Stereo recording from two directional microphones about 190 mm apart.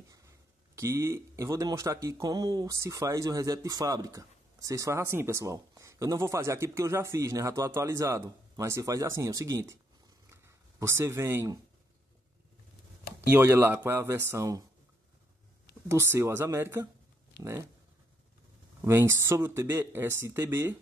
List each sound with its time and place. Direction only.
0.7 s speech: 15° right (ahead or behind)
13.3 s speech: 10° right (ahead or behind)
15.9 s speech: 15° right (ahead or behind)
18.9 s speech: 15° right (ahead or behind)